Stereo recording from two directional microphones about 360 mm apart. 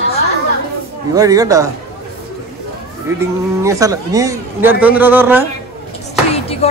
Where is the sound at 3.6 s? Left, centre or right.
Centre.